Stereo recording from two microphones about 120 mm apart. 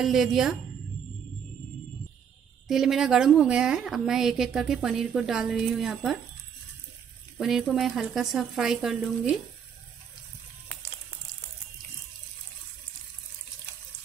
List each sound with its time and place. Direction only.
0.0 s a woman's voice: 5° right (ahead or behind)
2.7 s a woman's voice: 5° right (ahead or behind)
7.3 s a woman's voice: 5° right (ahead or behind)